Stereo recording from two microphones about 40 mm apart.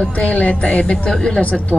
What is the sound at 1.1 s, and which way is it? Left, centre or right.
Speech, centre.